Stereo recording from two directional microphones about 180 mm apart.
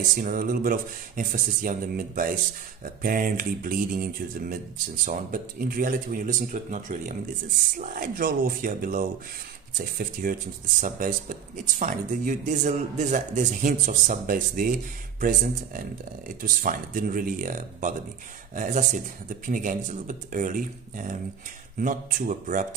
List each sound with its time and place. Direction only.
0.2 s speech: 55° right (ahead or behind)